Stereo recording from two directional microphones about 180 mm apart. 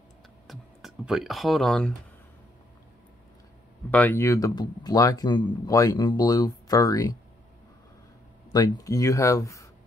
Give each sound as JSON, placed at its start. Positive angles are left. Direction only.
{"t": 0.5, "sound": "speech", "side_deg": 0}
{"t": 3.9, "sound": "speech", "side_deg": 10}
{"t": 8.5, "sound": "speech", "side_deg": 20}